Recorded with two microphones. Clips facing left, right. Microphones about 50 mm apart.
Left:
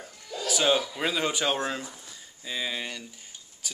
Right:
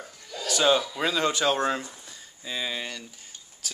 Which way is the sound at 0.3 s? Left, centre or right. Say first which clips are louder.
Right 2 dB; centre.